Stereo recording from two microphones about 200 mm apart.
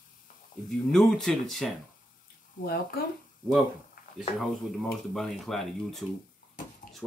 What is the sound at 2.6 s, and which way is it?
Speech, 50° left (ahead or behind).